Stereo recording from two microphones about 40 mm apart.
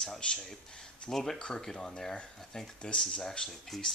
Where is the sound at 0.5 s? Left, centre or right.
Centre.